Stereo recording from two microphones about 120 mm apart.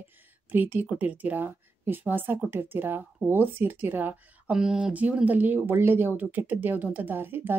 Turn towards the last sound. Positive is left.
turn(degrees=-15)  # may be behind; listen again after turning